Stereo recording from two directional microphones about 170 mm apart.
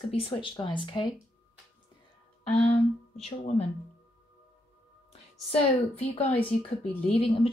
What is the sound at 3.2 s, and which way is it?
Speech, 35° left (ahead or behind).